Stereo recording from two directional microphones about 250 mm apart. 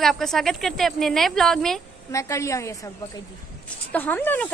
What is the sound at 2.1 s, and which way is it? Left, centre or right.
A woman's voice, centre.